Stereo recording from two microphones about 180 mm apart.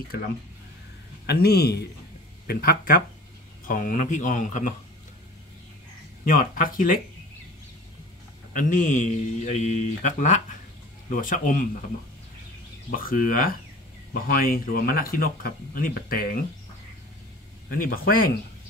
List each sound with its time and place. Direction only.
1.2 s a man's voice: 65° left (ahead or behind); by 4.7 s 45° left (ahead or behind)
6.2 s a man's voice: 50° left (ahead or behind)
8.5 s a man's voice: 45° left (ahead or behind)
12.9 s a man's voice: 50° left (ahead or behind)
17.6 s a man's voice: 55° left (ahead or behind)